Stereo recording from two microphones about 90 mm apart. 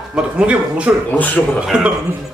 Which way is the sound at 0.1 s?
15° right (ahead or behind).